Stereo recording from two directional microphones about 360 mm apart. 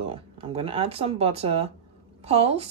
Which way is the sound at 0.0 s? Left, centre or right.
Centre.